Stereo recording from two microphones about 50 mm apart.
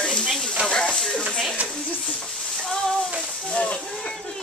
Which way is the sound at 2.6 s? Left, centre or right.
Centre.